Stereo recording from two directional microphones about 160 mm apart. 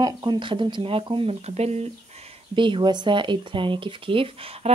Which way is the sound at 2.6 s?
30° right (ahead or behind).